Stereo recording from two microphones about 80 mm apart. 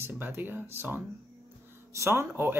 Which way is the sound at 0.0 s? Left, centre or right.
Right.